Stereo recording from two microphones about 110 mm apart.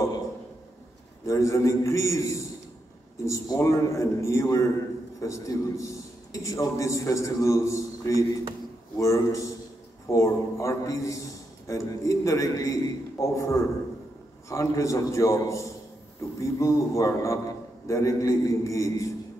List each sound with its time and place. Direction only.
1.2 s a man's voice: 30° left (ahead or behind)